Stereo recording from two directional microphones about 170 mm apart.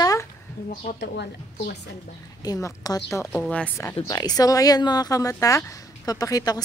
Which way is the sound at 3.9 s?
25° left (ahead or behind).